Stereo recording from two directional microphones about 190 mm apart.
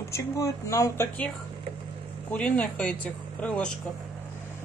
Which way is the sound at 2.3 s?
5° left (ahead or behind).